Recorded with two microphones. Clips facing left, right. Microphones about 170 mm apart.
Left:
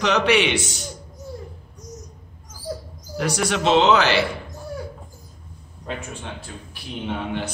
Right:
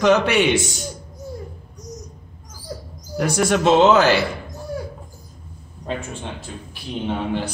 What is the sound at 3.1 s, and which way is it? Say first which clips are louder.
A man's voice: right 4 dB; 45° right (ahead or behind).